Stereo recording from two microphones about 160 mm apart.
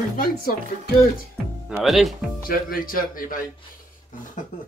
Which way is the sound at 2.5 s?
65° left (ahead or behind).